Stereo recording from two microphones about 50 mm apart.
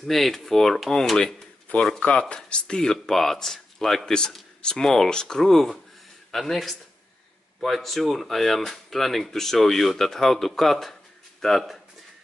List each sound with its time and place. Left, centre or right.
0.0 s speech: centre
1.2 s a sound: left
2.0 s speech: left; by 11.8 s centre